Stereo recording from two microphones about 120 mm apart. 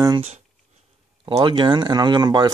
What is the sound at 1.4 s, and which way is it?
Speech, 40° right (ahead or behind).